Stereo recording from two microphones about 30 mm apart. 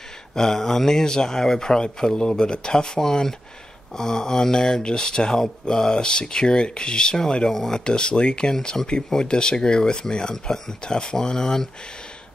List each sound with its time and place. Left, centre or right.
0.3 s speech: centre